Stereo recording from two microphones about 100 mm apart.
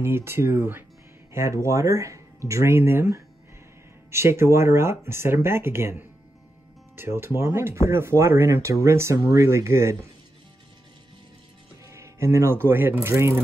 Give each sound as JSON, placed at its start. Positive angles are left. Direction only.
{"t": 0.0, "sound": "speech", "side_deg": -25}
{"t": 11.8, "sound": "speech", "side_deg": -30}